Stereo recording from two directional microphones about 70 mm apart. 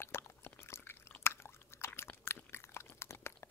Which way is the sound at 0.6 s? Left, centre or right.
Left.